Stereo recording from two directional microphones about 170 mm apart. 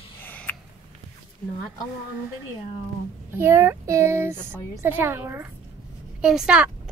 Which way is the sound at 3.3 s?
15° right (ahead or behind).